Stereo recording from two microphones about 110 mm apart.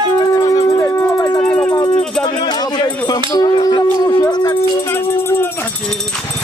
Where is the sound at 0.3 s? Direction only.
35° left (ahead or behind).